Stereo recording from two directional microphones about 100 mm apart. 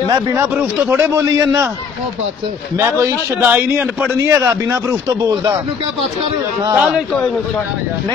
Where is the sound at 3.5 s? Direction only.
15° right (ahead or behind); by 5.5 s 35° right (ahead or behind).